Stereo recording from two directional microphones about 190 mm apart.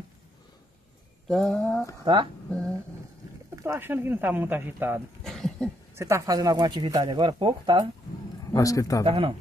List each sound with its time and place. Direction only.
1.3 s a sound: centre (ahead or behind)
3.5 s speech: 10° right (ahead or behind)
5.2 s a sound: centre (ahead or behind)
5.9 s speech: 15° right (ahead or behind)
8.5 s a man's voice: 15° left (ahead or behind)
9.0 s speech: 30° right (ahead or behind)